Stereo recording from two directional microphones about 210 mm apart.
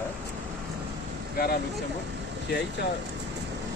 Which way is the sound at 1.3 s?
45° left (ahead or behind).